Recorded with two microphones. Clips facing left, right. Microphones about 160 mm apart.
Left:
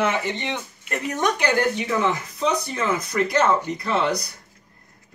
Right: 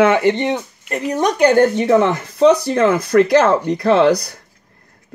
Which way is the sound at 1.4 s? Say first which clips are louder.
Right 10 dB; 55° right (ahead or behind).